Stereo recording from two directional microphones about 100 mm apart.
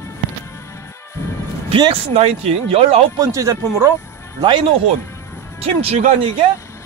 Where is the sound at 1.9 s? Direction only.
90° right.